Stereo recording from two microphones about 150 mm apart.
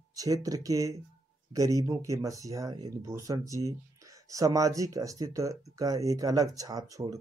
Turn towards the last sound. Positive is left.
turn(degrees=-25)  # may be behind; listen again after turning